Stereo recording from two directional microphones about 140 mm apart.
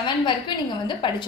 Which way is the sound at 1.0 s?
35° left (ahead or behind).